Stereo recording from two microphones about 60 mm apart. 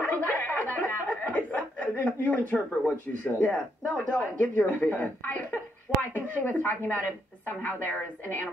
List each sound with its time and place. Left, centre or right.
0.0 s chuckle: left
3.3 s speech: left